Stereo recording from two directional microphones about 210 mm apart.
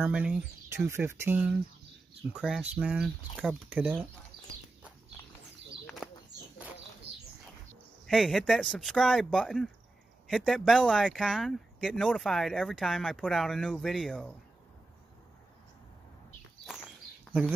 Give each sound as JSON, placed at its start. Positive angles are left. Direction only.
{"t": 0.0, "sound": "speech", "side_deg": -5}
{"t": 6.0, "sound": "bird", "side_deg": -5}
{"t": 7.1, "sound": "bird", "side_deg": -55}
{"t": 8.1, "sound": "speech", "side_deg": 0}
{"t": 17.3, "sound": "a sound", "side_deg": 5}